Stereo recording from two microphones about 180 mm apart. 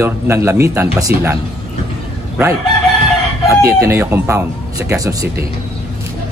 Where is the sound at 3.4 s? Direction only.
15° right (ahead or behind).